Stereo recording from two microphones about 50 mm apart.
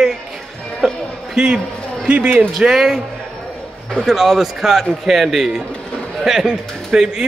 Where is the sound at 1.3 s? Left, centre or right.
Centre.